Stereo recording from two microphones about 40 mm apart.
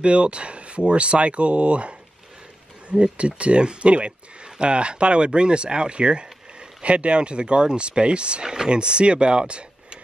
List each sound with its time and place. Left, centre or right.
0.0 s speech: right